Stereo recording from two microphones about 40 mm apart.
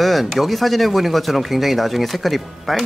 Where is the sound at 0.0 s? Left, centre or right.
Centre.